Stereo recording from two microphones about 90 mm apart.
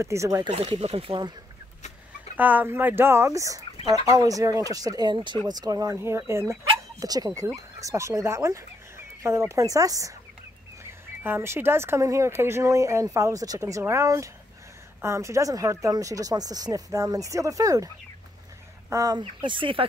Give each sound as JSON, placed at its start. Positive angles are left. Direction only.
{"t": 0.0, "sound": "speech", "side_deg": -35}
{"t": 0.6, "sound": "speech", "side_deg": -90}
{"t": 2.3, "sound": "speech", "side_deg": -20}
{"t": 5.5, "sound": "speech", "side_deg": -45}
{"t": 5.9, "sound": "speech", "side_deg": -30}
{"t": 6.5, "sound": "speech", "side_deg": -45}
{"t": 10.8, "sound": "speech", "side_deg": -30}
{"t": 19.1, "sound": "speech", "side_deg": -65}